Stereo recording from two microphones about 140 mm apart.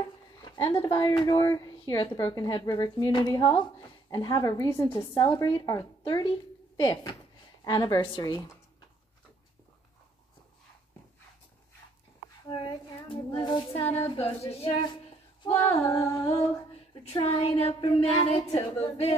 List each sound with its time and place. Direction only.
0.0 s a sound: 30° left (ahead or behind)
0.8 s speech: 35° left (ahead or behind)
6.8 s child singing: 30° left (ahead or behind)
7.6 s speech: 30° left (ahead or behind)
12.4 s child singing: 35° left (ahead or behind)
15.5 s speech: 20° left (ahead or behind)
17.2 s child singing: 45° left (ahead or behind)